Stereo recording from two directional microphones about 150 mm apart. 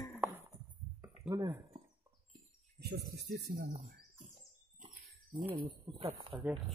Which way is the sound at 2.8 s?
90° right.